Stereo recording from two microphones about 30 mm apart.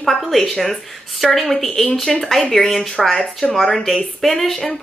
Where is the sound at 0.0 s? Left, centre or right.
Centre.